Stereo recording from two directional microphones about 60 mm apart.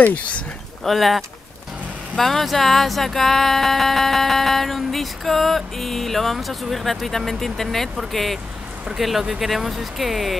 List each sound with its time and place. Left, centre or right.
0.0 s speech: left
0.8 s speech: centre